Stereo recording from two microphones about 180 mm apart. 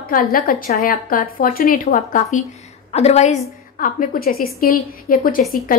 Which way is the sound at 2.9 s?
35° left (ahead or behind).